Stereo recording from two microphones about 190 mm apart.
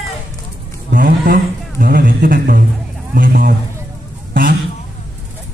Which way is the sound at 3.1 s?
50° right (ahead or behind).